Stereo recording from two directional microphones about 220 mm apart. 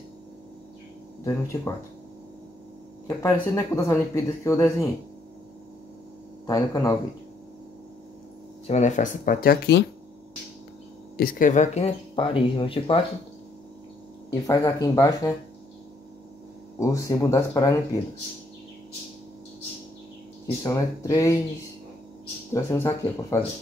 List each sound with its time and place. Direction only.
1.2 s speech: 15° left (ahead or behind)
3.1 s speech: 15° left (ahead or behind)
6.4 s speech: 15° left (ahead or behind)
8.6 s speech: 30° left (ahead or behind)
11.1 s speech: 40° left (ahead or behind); by 13.0 s 25° left (ahead or behind)
14.4 s speech: 15° left (ahead or behind)
16.8 s speech: 15° left (ahead or behind)
20.6 s speech: 15° left (ahead or behind)
22.5 s speech: 10° left (ahead or behind)